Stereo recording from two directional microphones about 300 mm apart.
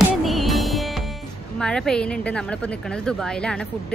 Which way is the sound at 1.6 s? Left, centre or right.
Centre.